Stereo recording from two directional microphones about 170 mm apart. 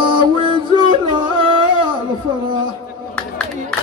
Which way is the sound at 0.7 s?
30° right (ahead or behind).